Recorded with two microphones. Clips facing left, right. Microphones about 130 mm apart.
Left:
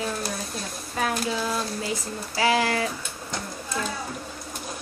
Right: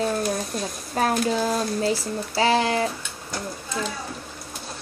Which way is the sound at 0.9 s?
40° right (ahead or behind).